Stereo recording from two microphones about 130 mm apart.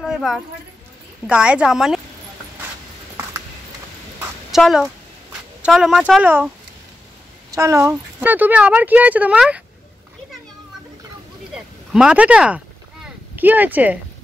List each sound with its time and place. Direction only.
0.0 s speech: 5° right (ahead or behind)
4.5 s speech: centre (ahead or behind)
7.5 s speech: 25° right (ahead or behind)
11.5 s a sound: 5° right (ahead or behind)